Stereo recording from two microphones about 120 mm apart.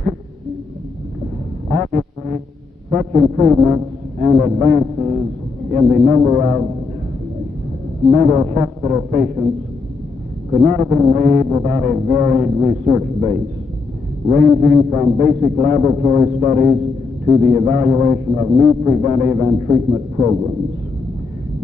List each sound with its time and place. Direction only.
2.9 s speech: 5° right (ahead or behind)
8.0 s speech: centre (ahead or behind)
10.5 s speech: centre (ahead or behind)